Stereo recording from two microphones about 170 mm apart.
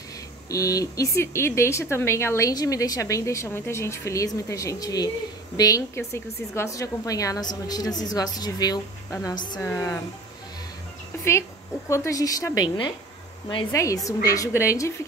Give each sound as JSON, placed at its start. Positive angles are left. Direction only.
{"t": 0.5, "sound": "speech", "side_deg": 20}
{"t": 11.9, "sound": "speech", "side_deg": 20}
{"t": 13.7, "sound": "speech", "side_deg": 20}